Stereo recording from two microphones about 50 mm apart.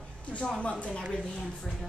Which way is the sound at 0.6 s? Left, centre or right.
Left.